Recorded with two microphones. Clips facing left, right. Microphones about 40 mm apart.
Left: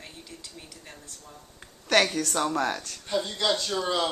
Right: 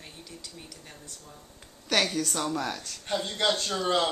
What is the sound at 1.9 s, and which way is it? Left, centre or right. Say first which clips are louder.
Speech: left 4 dB; left.